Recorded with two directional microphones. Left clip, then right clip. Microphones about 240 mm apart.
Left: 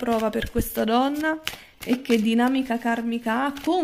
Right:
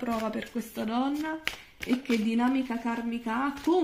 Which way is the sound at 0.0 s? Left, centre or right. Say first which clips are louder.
Left 8 dB; left.